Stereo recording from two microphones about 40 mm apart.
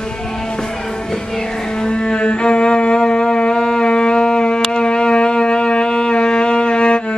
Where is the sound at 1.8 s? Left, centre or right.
Left.